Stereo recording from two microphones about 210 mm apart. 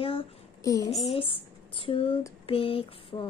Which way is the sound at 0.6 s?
15° left (ahead or behind).